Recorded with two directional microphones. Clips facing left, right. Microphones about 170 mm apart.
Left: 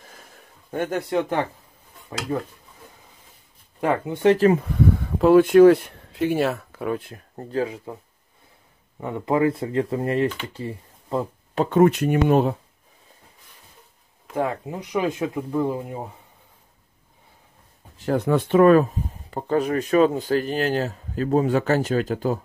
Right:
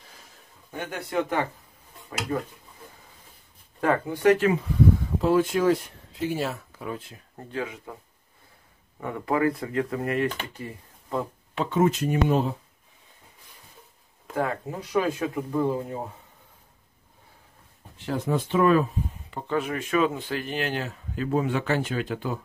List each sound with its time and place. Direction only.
0.7 s speech: 45° left (ahead or behind)
3.8 s speech: 15° left (ahead or behind)
4.5 s speech: 55° left (ahead or behind)
7.3 s speech: 35° left (ahead or behind)
9.0 s speech: 25° left (ahead or behind)
10.5 s a sound: 30° left (ahead or behind)
11.6 s speech: 60° left (ahead or behind)
14.3 s speech: 20° left (ahead or behind)
18.1 s speech: 60° left (ahead or behind); by 22.4 s 40° left (ahead or behind)